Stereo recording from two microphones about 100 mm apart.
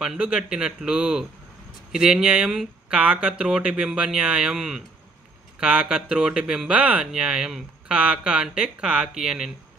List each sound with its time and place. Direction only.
0.0 s speech: 10° right (ahead or behind)